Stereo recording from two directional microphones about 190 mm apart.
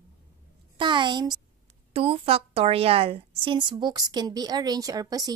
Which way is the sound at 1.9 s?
30° right (ahead or behind).